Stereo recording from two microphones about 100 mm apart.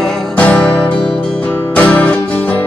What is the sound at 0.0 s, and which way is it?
Music, 5° left (ahead or behind).